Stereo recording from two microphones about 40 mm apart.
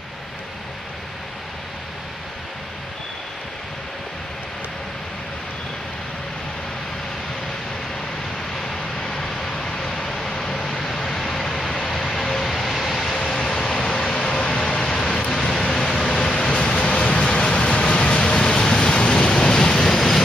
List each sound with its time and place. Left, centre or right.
8.6 s vehicle: centre
16.4 s a sound: left
17.5 s vehicle: centre